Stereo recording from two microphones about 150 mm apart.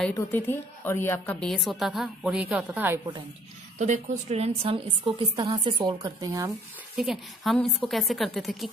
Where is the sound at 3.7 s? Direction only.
50° right (ahead or behind); by 6.5 s 25° right (ahead or behind).